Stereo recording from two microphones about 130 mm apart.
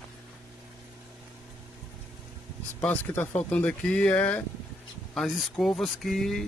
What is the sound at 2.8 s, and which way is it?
Speech, 15° left (ahead or behind).